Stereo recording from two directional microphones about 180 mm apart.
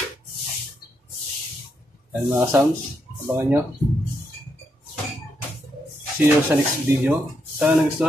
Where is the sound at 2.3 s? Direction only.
15° right (ahead or behind).